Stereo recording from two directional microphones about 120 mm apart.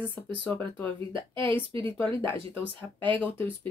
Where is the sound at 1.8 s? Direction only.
20° left (ahead or behind).